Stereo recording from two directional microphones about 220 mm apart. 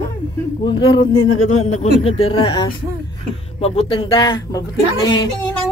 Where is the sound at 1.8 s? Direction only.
25° left (ahead or behind).